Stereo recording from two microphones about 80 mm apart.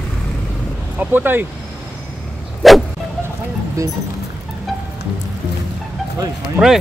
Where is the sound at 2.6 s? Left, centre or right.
Centre.